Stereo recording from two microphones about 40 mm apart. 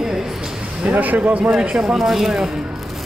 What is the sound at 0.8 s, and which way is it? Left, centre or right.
Speech, right.